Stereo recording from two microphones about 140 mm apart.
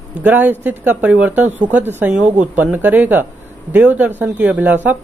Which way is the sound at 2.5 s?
10° right (ahead or behind).